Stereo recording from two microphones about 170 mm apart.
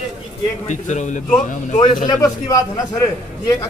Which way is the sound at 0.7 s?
45° left (ahead or behind).